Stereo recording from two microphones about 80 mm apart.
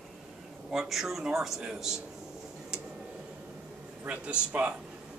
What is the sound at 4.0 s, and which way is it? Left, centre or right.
Speech, centre.